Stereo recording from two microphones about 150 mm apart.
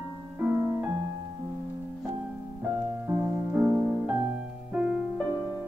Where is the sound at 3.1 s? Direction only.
10° right (ahead or behind).